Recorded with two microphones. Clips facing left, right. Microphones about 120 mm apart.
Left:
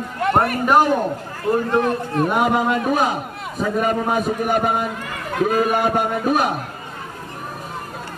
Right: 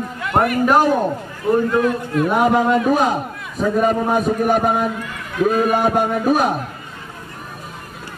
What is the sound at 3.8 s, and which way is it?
Speech, 5° left (ahead or behind).